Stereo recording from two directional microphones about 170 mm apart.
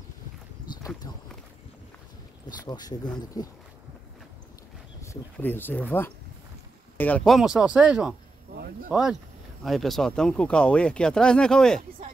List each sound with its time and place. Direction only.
1.1 s speech: 25° left (ahead or behind)
2.4 s speech: 25° left (ahead or behind)
5.0 s speech: 15° left (ahead or behind)